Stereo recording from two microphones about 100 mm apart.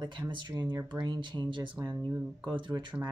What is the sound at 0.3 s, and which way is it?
Speech, 50° right (ahead or behind).